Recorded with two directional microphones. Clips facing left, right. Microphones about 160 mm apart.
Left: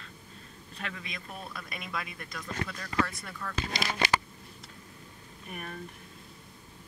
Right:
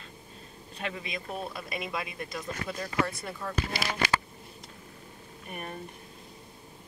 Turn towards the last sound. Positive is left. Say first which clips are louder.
# right 2 dB
turn(degrees=-25)  # may be behind; listen again after turning